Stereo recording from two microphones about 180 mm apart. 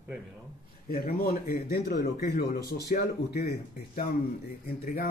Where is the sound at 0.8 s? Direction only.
55° left (ahead or behind).